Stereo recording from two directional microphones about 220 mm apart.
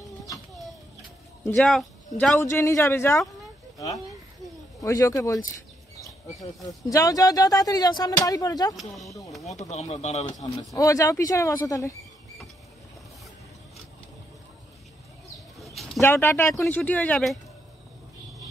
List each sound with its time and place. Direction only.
1.4 s speech: 5° left (ahead or behind)
2.3 s speech: 15° left (ahead or behind)
6.9 s speech: 15° left (ahead or behind)
8.7 s speech: centre (ahead or behind)
9.7 s speech: 30° left (ahead or behind)
10.4 s speech: 15° left (ahead or behind)
15.6 s bird: centre (ahead or behind)
16.0 s speech: 10° left (ahead or behind)